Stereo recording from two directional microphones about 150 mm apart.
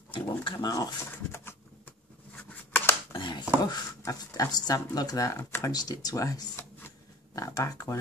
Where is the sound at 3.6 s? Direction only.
25° left (ahead or behind).